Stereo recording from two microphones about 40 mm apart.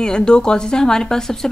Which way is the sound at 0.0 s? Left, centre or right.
Left.